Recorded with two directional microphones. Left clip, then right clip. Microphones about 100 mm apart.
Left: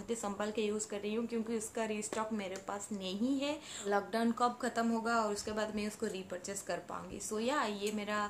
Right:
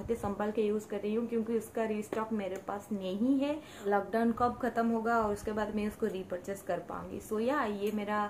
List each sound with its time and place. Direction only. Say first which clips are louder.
0.2 s a woman's voice: right 4 dB; 30° left (ahead or behind)
7.3 s a woman's voice: right 3 dB; 30° left (ahead or behind)